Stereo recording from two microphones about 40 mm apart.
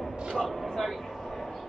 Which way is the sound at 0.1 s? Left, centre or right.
Centre.